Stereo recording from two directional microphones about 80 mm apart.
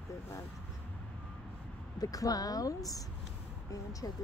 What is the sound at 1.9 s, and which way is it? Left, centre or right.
Speech, left.